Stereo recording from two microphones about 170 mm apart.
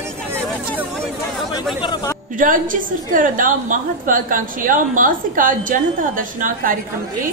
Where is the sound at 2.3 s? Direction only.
50° right (ahead or behind).